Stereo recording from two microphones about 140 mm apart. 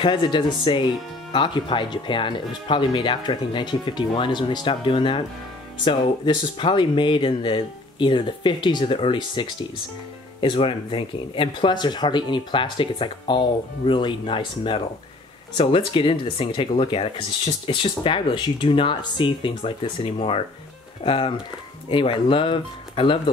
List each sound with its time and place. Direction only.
0.0 s speech: 35° left (ahead or behind)